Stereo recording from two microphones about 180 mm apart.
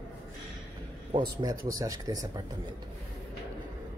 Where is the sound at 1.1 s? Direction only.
20° right (ahead or behind).